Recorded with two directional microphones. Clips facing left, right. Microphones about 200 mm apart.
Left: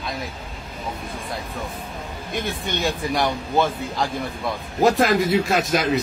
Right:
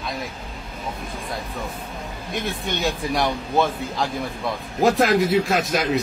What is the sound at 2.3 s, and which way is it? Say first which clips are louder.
Speech: even; centre (ahead or behind).